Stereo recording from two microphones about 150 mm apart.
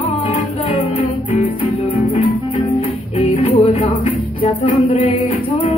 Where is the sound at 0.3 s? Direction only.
50° left (ahead or behind).